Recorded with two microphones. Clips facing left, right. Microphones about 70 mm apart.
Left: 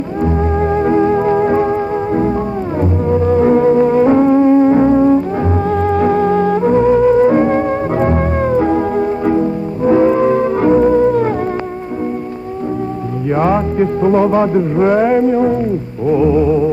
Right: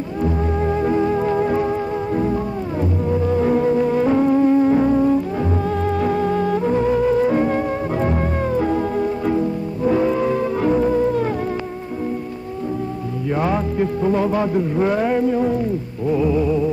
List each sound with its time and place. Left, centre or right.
0.2 s music: left
13.3 s music: left